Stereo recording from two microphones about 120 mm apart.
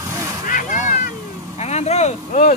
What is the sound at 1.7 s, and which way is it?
Speech, 65° left (ahead or behind).